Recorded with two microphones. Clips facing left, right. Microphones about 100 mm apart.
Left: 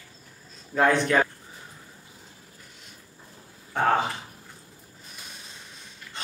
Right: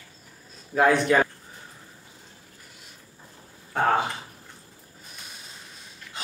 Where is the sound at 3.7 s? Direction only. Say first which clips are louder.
Even; centre (ahead or behind).